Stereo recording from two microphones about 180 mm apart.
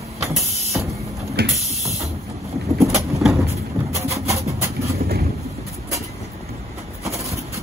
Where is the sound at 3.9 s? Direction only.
15° right (ahead or behind).